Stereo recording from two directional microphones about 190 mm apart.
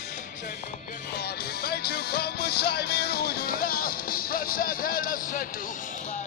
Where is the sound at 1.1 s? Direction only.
55° left (ahead or behind).